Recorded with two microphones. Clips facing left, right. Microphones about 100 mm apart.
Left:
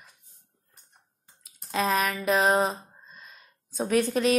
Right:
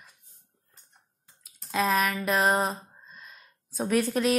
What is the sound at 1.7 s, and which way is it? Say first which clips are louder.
Speech: even; centre (ahead or behind).